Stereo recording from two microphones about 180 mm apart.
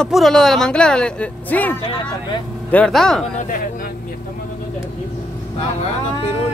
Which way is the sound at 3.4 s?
50° left (ahead or behind).